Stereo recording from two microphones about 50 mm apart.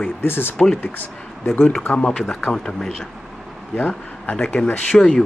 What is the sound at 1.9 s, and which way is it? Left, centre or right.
Speech, left.